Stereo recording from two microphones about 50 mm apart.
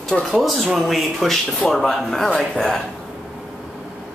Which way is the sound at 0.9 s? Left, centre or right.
Centre.